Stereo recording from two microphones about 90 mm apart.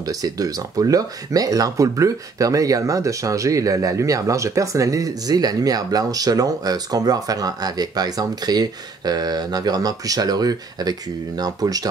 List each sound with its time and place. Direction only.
0.0 s speech: 45° right (ahead or behind)